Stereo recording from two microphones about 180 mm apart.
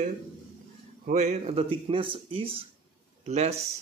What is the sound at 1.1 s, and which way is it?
Speech, 40° right (ahead or behind).